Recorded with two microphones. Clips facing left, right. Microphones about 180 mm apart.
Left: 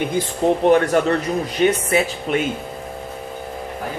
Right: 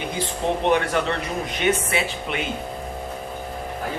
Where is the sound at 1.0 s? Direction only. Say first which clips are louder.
Left 6 dB; 45° left (ahead or behind).